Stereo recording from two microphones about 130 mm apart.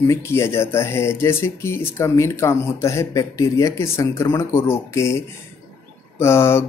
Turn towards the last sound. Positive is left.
turn(degrees=20)  # may be behind; listen again after turning